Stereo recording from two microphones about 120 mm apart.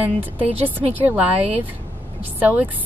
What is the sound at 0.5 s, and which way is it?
Speech, 15° right (ahead or behind).